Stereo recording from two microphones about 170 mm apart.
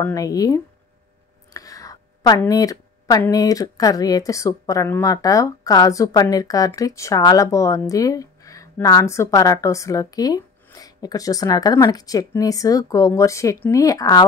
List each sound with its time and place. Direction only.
0.0 s a woman's voice: 20° left (ahead or behind)